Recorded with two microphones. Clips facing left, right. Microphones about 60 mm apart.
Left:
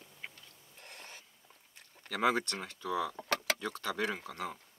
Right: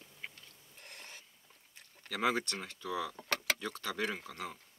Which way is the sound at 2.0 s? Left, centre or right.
Left.